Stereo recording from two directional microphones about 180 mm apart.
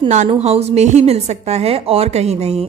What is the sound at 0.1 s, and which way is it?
A woman's voice, 40° right (ahead or behind).